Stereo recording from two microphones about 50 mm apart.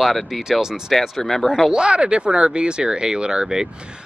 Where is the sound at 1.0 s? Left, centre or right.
Centre.